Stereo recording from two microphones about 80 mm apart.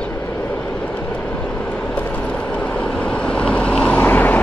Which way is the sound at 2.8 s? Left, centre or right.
Centre.